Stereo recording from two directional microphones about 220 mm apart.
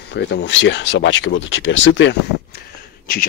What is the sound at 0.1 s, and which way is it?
Speech, 50° left (ahead or behind).